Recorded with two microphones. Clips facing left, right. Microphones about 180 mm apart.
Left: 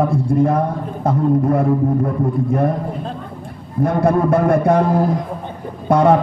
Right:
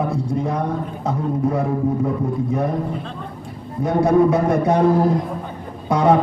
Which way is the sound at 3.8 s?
55° left (ahead or behind).